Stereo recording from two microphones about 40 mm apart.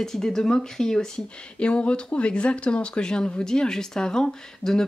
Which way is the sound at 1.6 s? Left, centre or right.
Left.